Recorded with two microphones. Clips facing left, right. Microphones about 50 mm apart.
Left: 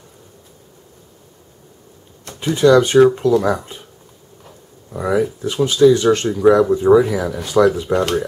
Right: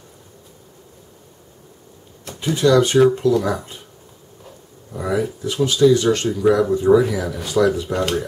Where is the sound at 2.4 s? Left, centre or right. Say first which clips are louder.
Left 3 dB; centre.